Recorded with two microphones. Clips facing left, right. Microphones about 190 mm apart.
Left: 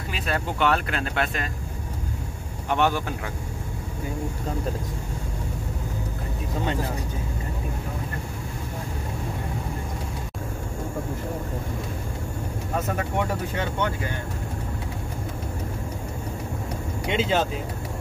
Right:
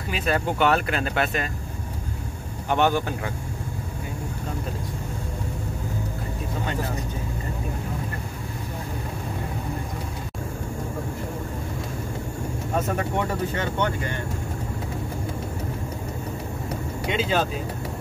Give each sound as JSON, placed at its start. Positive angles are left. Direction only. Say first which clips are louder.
{"t": 0.1, "sound": "speech", "louder": "right 4 dB", "side_deg": 0}
{"t": 2.7, "sound": "speech", "louder": "right 2 dB", "side_deg": 0}
{"t": 12.9, "sound": "speech", "louder": "right 1 dB", "side_deg": 10}
{"t": 17.1, "sound": "speech", "louder": "left 1 dB", "side_deg": 25}